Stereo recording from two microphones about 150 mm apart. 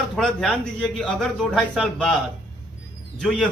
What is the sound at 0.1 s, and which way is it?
A man's voice, 5° left (ahead or behind).